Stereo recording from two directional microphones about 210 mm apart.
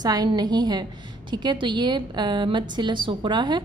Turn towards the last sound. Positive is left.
turn(degrees=-20)  # may be behind; listen again after turning